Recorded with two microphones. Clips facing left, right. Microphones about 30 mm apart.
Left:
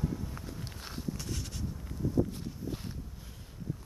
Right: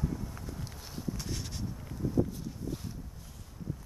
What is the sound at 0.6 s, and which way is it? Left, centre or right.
Walk, left.